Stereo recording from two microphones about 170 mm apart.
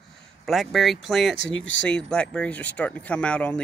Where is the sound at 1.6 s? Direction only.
90° left.